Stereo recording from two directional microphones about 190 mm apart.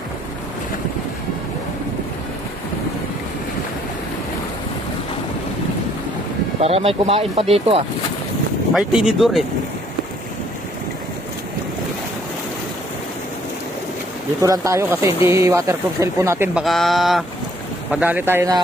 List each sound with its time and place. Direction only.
6.6 s speech: 30° right (ahead or behind)
8.7 s speech: 5° right (ahead or behind)
14.4 s speech: 15° right (ahead or behind)
16.6 s speech: centre (ahead or behind)